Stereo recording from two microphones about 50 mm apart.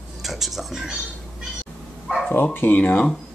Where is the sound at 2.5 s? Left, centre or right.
Left.